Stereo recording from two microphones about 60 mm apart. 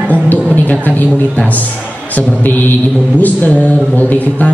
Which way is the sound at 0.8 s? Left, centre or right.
Left.